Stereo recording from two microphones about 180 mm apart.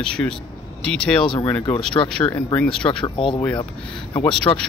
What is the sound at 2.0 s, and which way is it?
Speech, 25° left (ahead or behind).